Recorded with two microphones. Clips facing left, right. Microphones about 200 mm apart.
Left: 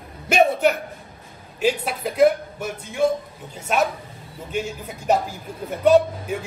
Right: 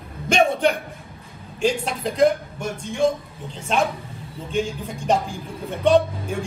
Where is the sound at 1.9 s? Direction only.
5° left (ahead or behind).